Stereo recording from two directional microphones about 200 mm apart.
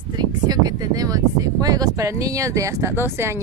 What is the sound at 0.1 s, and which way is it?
A woman's voice, 20° right (ahead or behind).